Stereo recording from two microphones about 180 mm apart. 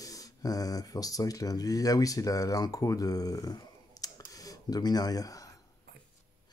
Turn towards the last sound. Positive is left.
turn(degrees=20)  # may be behind; listen again after turning